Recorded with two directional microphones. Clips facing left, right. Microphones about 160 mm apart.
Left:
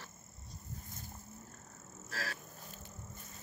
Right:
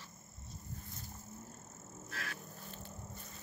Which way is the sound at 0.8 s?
50° left (ahead or behind).